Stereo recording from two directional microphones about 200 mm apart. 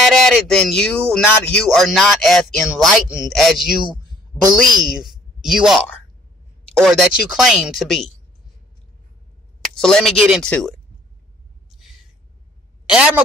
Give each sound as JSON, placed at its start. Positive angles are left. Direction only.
{"t": 0.0, "sound": "speech", "side_deg": 0}
{"t": 3.8, "sound": "a sound", "side_deg": -20}
{"t": 4.7, "sound": "a woman's voice", "side_deg": 0}
{"t": 9.6, "sound": "speech", "side_deg": 5}
{"t": 12.8, "sound": "speech", "side_deg": -5}